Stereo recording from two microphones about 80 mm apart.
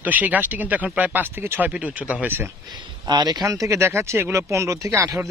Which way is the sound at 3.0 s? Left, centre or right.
Right.